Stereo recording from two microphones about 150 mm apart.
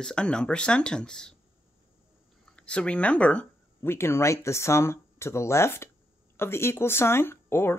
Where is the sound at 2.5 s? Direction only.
5° left (ahead or behind).